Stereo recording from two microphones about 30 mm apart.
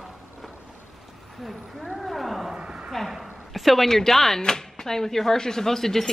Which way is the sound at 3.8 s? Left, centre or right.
Centre.